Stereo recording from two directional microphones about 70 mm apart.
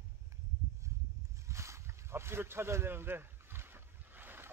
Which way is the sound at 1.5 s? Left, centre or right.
Right.